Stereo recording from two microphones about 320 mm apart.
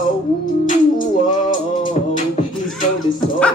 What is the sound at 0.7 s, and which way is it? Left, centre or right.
Beatboxing, left.